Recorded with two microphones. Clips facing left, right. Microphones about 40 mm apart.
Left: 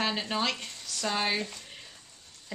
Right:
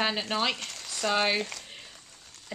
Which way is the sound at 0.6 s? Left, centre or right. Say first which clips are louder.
Right 2 dB; right.